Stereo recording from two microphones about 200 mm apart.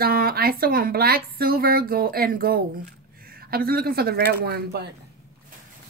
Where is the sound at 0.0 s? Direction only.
50° right (ahead or behind).